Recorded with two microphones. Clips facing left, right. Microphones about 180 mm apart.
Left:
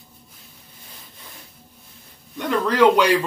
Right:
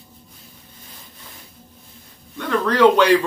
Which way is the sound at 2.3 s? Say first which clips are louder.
Even; 10° left (ahead or behind).